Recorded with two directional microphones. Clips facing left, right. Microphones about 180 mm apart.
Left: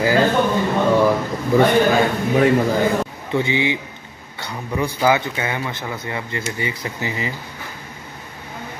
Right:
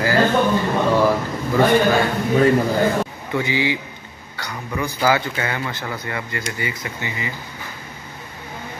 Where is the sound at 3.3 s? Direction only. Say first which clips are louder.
Left 2 dB; 25° left (ahead or behind).